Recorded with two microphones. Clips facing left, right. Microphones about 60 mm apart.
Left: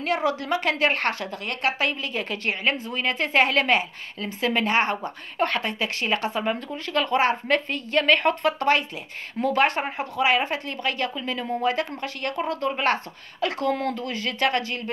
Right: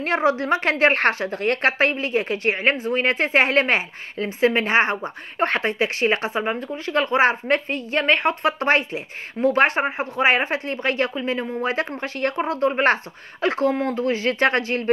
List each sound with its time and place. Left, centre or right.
0.0 s a woman's voice: right
2.9 s a woman's voice: right